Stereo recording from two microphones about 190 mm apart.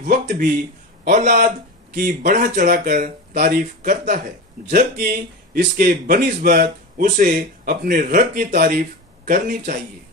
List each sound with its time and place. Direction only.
0.0 s a man's voice: 55° right (ahead or behind)
1.1 s a man's voice: 40° right (ahead or behind)